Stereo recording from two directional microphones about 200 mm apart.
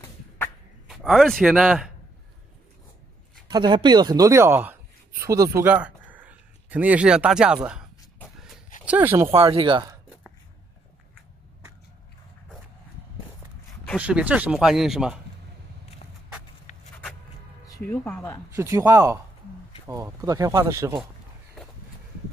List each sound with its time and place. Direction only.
0.8 s a man's voice: centre (ahead or behind)
3.4 s a man's voice: 20° right (ahead or behind); by 7.8 s 5° right (ahead or behind)
8.8 s speech: 10° right (ahead or behind)
9.3 s speech: 30° right (ahead or behind)
13.9 s speech: 5° right (ahead or behind)
16.7 s a sound: 40° left (ahead or behind)
17.7 s speech: 10° left (ahead or behind)
18.5 s speech: 15° right (ahead or behind)